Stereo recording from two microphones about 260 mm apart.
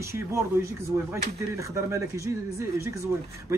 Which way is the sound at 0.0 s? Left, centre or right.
Centre.